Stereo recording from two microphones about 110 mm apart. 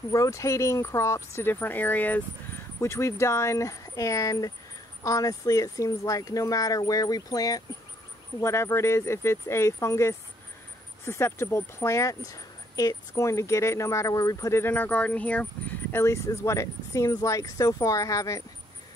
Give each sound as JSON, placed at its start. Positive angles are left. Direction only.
{"t": 0.1, "sound": "speech", "side_deg": 30}
{"t": 15.9, "sound": "speech", "side_deg": 25}